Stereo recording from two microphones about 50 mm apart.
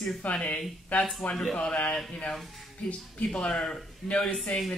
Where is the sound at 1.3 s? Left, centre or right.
Centre.